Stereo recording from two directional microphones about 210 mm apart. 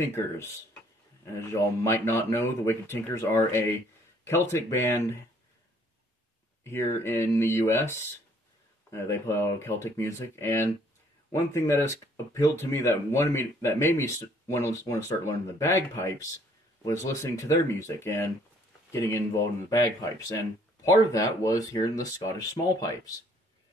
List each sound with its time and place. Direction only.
1.2 s speech: 15° left (ahead or behind)
6.6 s speech: 10° left (ahead or behind)